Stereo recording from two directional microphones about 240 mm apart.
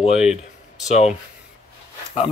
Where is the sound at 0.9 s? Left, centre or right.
Left.